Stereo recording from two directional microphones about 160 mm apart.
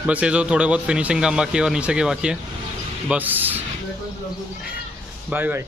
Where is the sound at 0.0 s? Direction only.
5° right (ahead or behind).